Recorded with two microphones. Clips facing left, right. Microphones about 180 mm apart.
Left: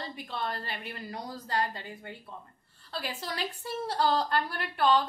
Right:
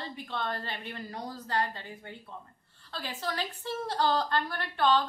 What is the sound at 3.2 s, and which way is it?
A woman's voice, 10° left (ahead or behind).